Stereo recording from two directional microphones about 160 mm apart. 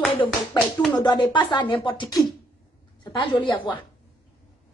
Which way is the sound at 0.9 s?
25° left (ahead or behind).